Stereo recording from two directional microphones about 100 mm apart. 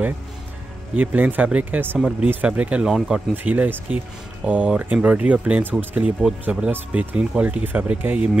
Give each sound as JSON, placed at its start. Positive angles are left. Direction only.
{"t": 0.9, "sound": "speech", "side_deg": -15}